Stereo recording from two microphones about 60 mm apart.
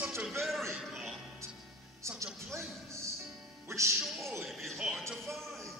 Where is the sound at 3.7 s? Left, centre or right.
Right.